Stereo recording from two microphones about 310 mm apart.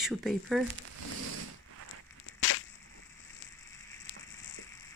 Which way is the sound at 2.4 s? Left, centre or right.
Left.